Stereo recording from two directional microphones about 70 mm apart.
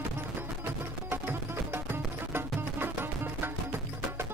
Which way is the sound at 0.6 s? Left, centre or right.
Right.